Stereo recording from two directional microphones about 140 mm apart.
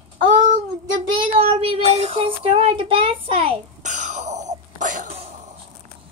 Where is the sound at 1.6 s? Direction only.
45° right (ahead or behind).